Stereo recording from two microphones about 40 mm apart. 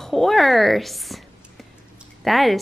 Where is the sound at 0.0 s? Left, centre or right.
Centre.